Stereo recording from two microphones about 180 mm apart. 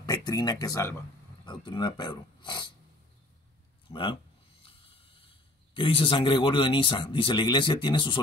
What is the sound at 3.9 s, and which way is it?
Speech, 30° left (ahead or behind).